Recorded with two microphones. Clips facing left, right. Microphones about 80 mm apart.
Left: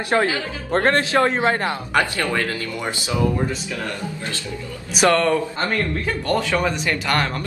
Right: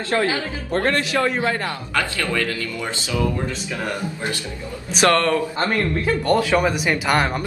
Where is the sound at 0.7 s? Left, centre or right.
Left.